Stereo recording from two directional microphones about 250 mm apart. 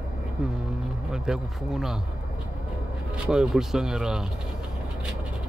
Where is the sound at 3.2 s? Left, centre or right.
Centre.